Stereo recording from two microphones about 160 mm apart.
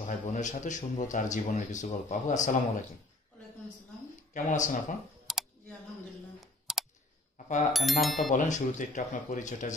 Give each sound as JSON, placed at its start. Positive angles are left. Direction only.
{"t": 0.0, "sound": "a man's voice", "side_deg": 50}
{"t": 4.3, "sound": "a man's voice", "side_deg": 50}
{"t": 5.2, "sound": "computer keyboard", "side_deg": 0}
{"t": 7.7, "sound": "speech", "side_deg": 0}
{"t": 8.3, "sound": "a man's voice", "side_deg": 50}